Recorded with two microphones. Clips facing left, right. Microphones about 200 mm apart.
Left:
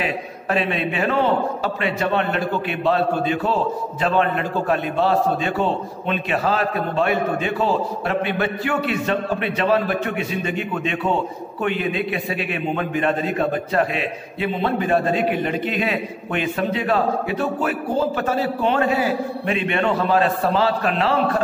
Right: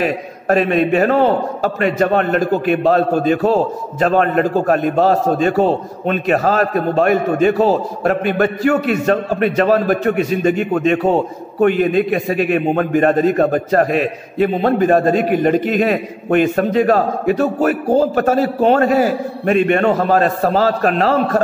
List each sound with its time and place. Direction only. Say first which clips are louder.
0.0 s a man's voice: right 6 dB; 45° right (ahead or behind)